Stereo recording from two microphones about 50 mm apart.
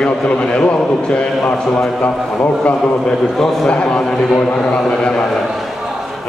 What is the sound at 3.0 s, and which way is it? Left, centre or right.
Speech, centre.